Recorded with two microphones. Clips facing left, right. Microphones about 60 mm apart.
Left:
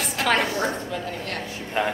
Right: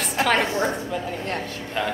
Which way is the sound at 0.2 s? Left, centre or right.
Right.